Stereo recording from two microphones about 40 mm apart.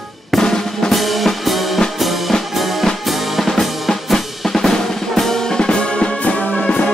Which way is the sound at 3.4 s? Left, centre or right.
Centre.